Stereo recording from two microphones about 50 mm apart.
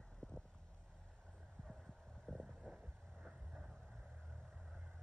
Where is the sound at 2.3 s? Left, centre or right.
Centre.